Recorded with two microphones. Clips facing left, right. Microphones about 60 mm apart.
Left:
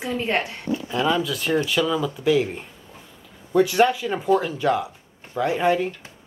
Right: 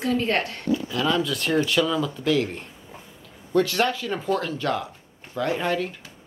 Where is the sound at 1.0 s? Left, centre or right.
Centre.